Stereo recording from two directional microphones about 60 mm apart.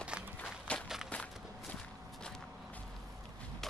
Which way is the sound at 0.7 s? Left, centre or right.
Left.